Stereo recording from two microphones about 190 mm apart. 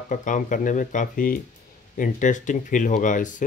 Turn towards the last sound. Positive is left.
turn(degrees=40)  # may be behind; listen again after turning